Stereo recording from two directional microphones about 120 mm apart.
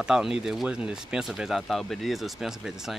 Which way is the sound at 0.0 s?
5° right (ahead or behind).